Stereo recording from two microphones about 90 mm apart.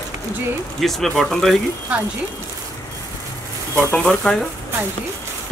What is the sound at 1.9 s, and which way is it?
Speech, 15° right (ahead or behind).